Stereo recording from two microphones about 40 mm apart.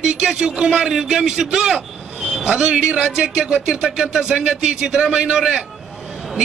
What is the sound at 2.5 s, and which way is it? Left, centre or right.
Speech, right.